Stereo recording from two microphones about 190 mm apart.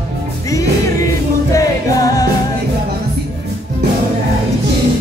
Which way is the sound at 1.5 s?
20° left (ahead or behind).